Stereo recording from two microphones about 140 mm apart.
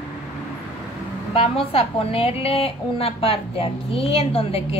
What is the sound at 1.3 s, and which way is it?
A woman's voice, 40° left (ahead or behind).